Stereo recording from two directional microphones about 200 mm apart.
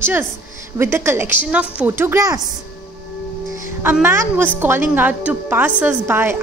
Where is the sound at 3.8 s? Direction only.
10° right (ahead or behind).